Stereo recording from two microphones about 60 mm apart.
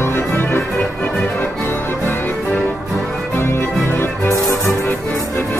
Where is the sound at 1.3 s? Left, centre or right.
Left.